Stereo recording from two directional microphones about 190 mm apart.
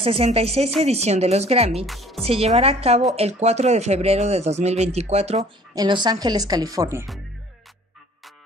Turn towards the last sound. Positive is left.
turn(degrees=-20)  # may be behind; listen again after turning